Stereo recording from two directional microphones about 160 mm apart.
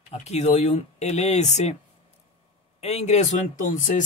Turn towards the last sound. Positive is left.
turn(degrees=50)  # may be behind; listen again after turning